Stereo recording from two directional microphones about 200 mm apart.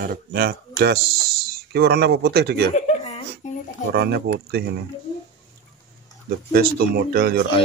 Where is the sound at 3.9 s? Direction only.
50° right (ahead or behind).